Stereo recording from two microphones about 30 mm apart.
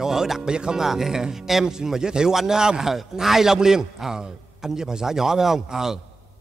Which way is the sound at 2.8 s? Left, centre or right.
Centre.